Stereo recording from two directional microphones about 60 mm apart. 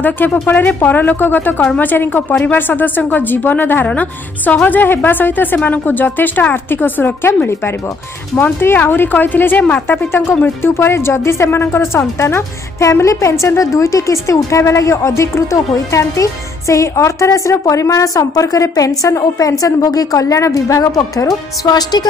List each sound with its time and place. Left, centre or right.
0.0 s a woman's voice: left
8.5 s a woman's voice: left
13.0 s a woman's voice: left
19.6 s a woman's voice: left